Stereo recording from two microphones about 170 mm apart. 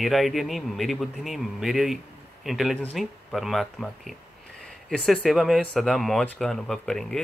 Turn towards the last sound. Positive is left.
turn(degrees=5)  # may be behind; listen again after turning